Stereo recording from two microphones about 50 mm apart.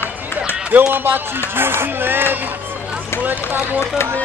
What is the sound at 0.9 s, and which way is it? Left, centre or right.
Speech, right.